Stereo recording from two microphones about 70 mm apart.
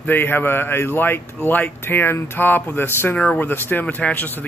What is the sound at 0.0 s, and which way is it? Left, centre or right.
A man's voice, left.